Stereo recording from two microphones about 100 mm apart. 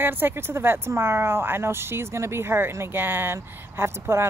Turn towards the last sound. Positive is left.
turn(degrees=-25)  # may be behind; listen again after turning